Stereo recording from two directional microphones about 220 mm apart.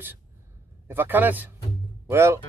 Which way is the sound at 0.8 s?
10° right (ahead or behind).